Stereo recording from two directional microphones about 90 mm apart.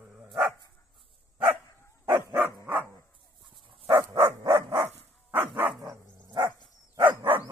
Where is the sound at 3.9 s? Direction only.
25° right (ahead or behind).